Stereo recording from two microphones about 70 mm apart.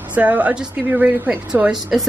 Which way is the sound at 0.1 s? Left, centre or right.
Right.